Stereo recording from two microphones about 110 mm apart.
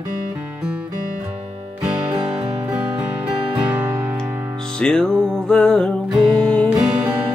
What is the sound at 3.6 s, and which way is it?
Music, 20° right (ahead or behind).